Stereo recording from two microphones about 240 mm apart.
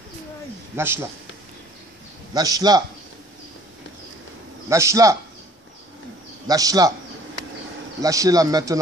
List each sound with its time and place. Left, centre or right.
0.7 s speech: centre
2.3 s speech: centre
4.6 s speech: centre
6.4 s speech: centre
8.0 s speech: centre